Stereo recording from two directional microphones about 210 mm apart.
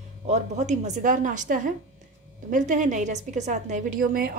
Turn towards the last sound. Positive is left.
turn(degrees=-40)  # may be behind; listen again after turning